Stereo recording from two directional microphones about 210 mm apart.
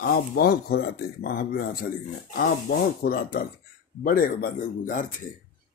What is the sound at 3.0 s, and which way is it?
A man's voice, 45° left (ahead or behind).